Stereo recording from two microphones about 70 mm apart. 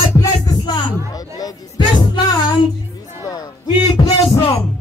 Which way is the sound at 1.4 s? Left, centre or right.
Left.